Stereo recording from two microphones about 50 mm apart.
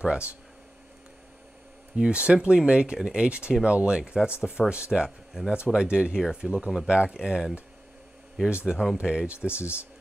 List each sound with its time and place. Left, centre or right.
0.0 s speech: right
2.0 s speech: right
7.2 s speech: centre
9.5 s speech: left